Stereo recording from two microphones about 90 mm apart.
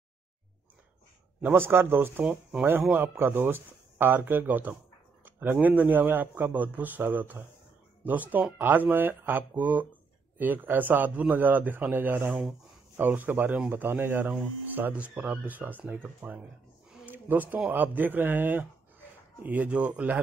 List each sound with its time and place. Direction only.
1.4 s speech: 25° right (ahead or behind)
17.0 s a sound: 20° right (ahead or behind)
17.6 s speech: 20° right (ahead or behind)